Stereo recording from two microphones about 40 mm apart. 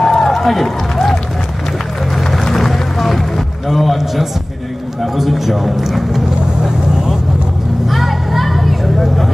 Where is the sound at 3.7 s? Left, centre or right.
Centre.